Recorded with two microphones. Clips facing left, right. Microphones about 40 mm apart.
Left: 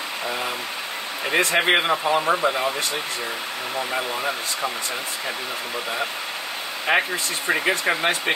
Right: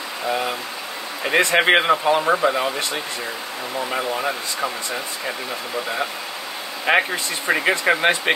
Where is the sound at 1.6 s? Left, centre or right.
Right.